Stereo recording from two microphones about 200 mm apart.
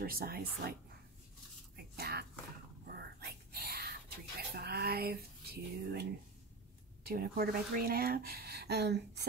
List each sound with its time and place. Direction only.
0.0 s speech: 50° right (ahead or behind)
2.0 s whispering: 55° right (ahead or behind)
4.6 s a sound: 55° right (ahead or behind)
7.1 s speech: 50° right (ahead or behind)